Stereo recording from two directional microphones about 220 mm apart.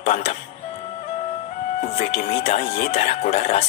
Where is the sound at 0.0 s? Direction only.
30° left (ahead or behind).